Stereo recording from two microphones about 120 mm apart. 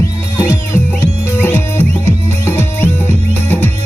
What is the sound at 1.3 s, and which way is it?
Music, 20° left (ahead or behind).